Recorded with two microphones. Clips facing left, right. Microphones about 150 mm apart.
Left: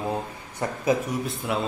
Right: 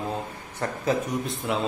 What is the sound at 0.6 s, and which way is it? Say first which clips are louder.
Speech: left 1 dB; 10° left (ahead or behind).